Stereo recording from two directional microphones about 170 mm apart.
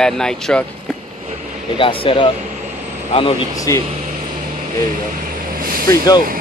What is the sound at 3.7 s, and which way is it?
Speech, 20° left (ahead or behind).